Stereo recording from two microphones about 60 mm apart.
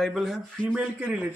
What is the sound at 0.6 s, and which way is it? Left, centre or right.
Speech, right.